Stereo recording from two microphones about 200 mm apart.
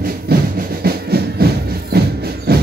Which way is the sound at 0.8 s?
50° right (ahead or behind).